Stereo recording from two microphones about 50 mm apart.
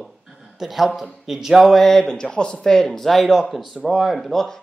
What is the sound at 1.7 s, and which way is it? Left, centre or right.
Speech, centre.